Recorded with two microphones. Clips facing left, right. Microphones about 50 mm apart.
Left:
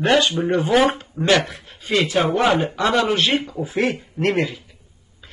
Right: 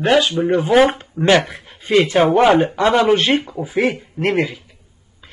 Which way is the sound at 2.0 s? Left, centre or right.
Right.